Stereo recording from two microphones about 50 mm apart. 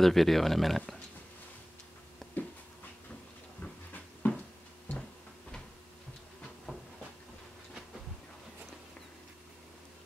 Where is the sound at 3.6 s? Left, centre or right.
Left.